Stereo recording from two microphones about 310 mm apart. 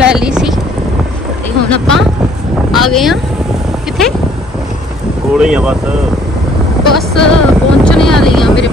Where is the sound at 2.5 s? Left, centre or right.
Centre.